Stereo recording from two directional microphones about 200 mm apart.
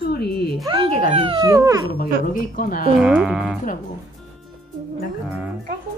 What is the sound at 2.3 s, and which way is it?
Speech, 45° left (ahead or behind).